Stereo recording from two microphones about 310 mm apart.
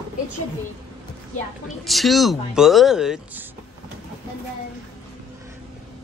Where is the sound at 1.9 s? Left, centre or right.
Centre.